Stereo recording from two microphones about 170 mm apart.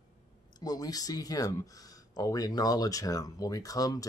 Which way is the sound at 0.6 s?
20° left (ahead or behind).